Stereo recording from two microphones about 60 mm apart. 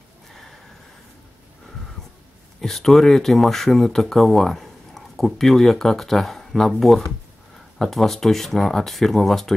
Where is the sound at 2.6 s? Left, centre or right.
Centre.